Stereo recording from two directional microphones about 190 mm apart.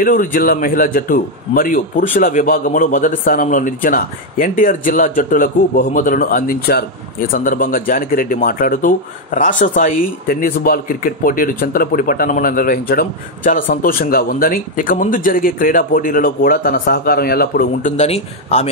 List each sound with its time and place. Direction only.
0.0 s a man's voice: 45° left (ahead or behind)